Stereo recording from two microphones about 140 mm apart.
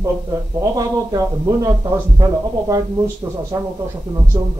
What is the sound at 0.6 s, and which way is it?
Speech, 25° right (ahead or behind).